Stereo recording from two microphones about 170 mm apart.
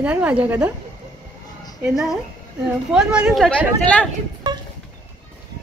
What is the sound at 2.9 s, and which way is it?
Speech, 5° right (ahead or behind).